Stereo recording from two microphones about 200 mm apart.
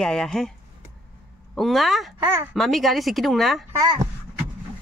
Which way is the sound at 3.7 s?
15° right (ahead or behind).